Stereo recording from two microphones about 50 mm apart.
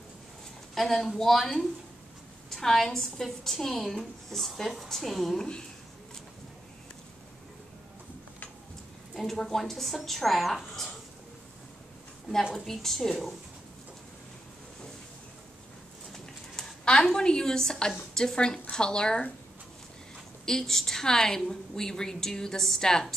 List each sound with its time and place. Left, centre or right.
0.7 s a woman's voice: centre
9.1 s a woman's voice: centre
12.5 s a woman's voice: centre
16.1 s horse: centre
16.8 s a woman's voice: centre
20.4 s a woman's voice: centre